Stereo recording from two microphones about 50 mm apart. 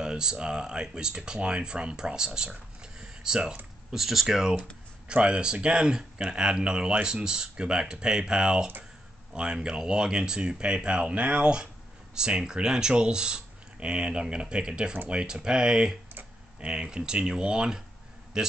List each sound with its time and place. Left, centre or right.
0.0 s speech: centre
3.9 s speech: centre
5.0 s a man's voice: centre